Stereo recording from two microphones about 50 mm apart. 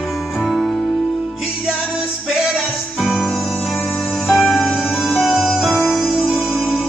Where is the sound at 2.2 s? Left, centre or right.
Centre.